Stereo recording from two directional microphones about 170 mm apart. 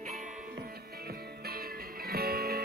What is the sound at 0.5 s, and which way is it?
Music, 65° right (ahead or behind).